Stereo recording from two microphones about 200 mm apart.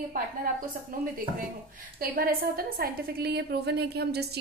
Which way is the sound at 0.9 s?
45° right (ahead or behind).